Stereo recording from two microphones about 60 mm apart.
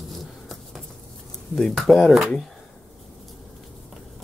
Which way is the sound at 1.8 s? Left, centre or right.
Centre.